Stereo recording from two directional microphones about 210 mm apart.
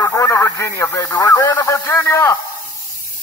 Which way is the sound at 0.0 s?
15° left (ahead or behind).